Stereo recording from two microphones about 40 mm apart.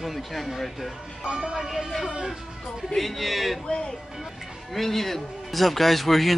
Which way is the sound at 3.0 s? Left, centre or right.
Centre.